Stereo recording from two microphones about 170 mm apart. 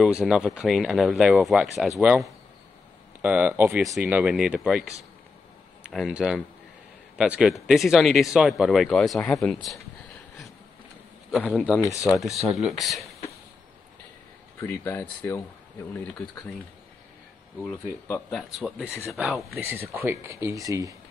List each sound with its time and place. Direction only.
0.2 s speech: centre (ahead or behind)
5.9 s speech: centre (ahead or behind)
11.8 s speech: 20° left (ahead or behind)
12.1 s speech: centre (ahead or behind)
14.6 s speech: 15° left (ahead or behind)
18.3 s speech: centre (ahead or behind)
19.6 s speech: 15° right (ahead or behind)